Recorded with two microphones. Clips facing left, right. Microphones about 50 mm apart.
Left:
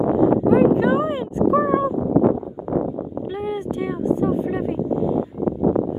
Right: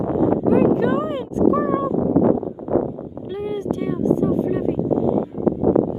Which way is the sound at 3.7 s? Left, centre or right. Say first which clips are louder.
Right 3 dB; centre.